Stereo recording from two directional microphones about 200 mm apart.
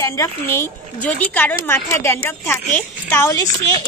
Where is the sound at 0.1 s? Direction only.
15° left (ahead or behind).